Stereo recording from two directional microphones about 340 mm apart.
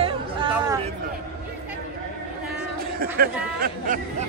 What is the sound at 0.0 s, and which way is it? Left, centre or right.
Chatter, centre.